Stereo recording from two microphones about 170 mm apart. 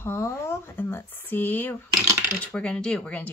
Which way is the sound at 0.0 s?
15° left (ahead or behind).